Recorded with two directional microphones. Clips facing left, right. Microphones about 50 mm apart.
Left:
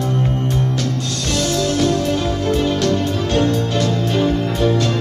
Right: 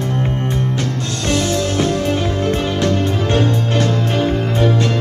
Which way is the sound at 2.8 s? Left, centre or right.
Right.